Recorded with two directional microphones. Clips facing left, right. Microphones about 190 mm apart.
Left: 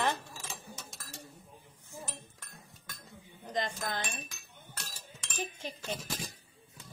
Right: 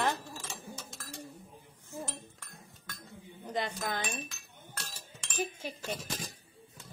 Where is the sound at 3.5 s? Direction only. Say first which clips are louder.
Right 1 dB; 10° right (ahead or behind).